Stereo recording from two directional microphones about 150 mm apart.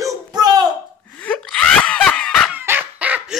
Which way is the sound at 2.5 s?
15° right (ahead or behind).